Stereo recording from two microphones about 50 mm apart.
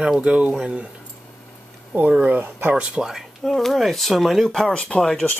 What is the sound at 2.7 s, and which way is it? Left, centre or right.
Speech, right.